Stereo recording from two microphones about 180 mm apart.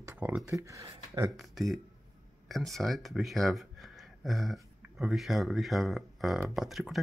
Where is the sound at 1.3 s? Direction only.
Centre (ahead or behind).